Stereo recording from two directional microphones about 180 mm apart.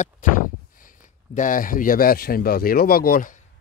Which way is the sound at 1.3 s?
45° left (ahead or behind).